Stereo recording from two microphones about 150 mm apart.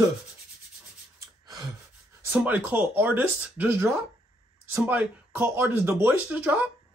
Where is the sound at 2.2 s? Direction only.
10° right (ahead or behind).